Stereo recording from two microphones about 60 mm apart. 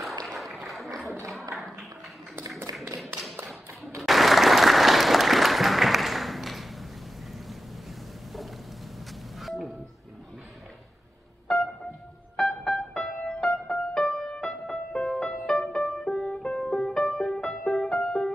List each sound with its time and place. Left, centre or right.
0.3 s applause: centre
0.7 s a sound: centre
2.7 s tap: right
4.0 s applause: centre
9.4 s music: centre
12.4 s music: centre